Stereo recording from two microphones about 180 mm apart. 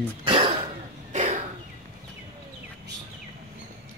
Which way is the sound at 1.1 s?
45° right (ahead or behind).